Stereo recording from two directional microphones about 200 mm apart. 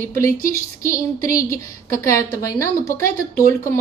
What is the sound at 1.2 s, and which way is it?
A woman's voice, 15° left (ahead or behind).